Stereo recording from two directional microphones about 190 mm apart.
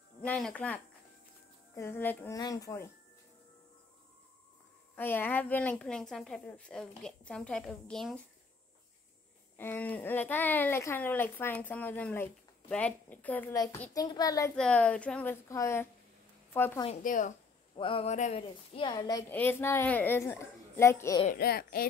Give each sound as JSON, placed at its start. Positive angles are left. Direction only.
{"t": 0.2, "sound": "a woman's voice", "side_deg": 5}
{"t": 1.8, "sound": "a woman's voice", "side_deg": 10}
{"t": 4.9, "sound": "a woman's voice", "side_deg": 10}
{"t": 9.6, "sound": "a woman's voice", "side_deg": 10}
{"t": 14.5, "sound": "a woman's voice", "side_deg": 5}
{"t": 17.0, "sound": "a child's voice", "side_deg": 45}
{"t": 17.7, "sound": "a sound", "side_deg": 25}
{"t": 18.8, "sound": "a child's voice", "side_deg": 25}
{"t": 21.3, "sound": "a child's voice", "side_deg": 55}